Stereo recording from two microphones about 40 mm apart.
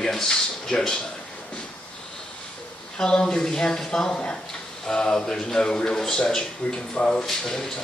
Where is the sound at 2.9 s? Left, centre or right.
Centre.